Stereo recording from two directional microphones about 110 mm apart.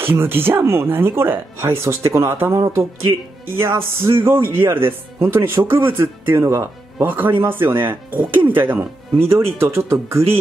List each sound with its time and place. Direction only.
0.0 s speech: 20° right (ahead or behind)
3.1 s speech: 45° right (ahead or behind)
3.4 s speech: 20° right (ahead or behind)